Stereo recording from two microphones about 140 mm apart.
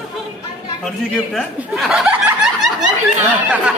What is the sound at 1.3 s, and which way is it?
Speech, centre (ahead or behind).